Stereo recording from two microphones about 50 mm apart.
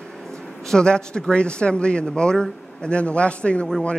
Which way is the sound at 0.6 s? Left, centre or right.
Centre.